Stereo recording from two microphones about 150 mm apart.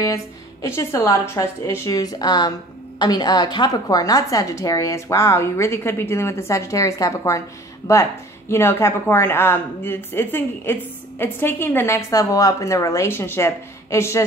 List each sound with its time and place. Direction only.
0.0 s a woman's voice: 20° left (ahead or behind)